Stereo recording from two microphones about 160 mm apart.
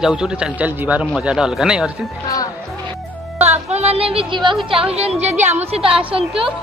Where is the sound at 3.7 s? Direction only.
40° right (ahead or behind).